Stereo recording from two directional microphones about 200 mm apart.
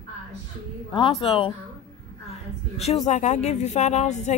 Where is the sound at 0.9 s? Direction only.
25° left (ahead or behind).